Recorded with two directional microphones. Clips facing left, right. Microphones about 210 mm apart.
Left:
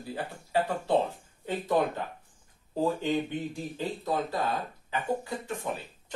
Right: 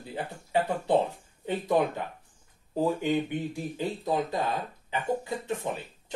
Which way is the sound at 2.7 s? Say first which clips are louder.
Right 1 dB; 15° right (ahead or behind).